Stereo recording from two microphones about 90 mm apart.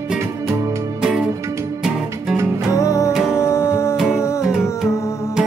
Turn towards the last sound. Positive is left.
turn(degrees=-5)  # may be behind; listen again after turning